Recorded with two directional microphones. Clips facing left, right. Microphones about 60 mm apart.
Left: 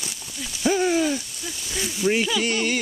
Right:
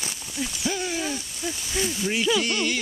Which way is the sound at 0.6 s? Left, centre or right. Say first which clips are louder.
Left 9 dB; left.